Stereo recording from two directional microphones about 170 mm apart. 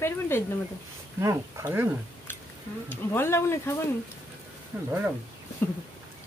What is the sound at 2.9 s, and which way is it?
Speech, 15° left (ahead or behind).